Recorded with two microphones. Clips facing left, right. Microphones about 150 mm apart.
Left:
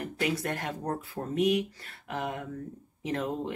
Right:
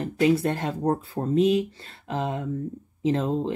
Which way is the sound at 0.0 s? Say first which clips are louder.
Right 9 dB; 25° right (ahead or behind).